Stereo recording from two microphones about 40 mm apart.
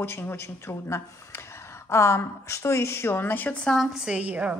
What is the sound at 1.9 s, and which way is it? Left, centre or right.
Speech, left.